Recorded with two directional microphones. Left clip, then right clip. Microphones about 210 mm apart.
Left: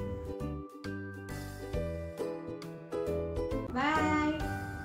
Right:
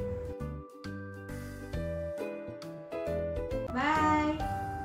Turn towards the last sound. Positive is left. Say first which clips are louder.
# right 2 dB
turn(degrees=0)  # may be behind; listen again after turning